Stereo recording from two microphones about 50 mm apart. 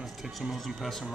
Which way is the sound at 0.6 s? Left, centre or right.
Centre.